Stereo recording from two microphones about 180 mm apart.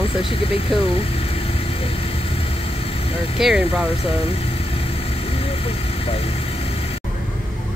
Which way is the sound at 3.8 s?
30° left (ahead or behind).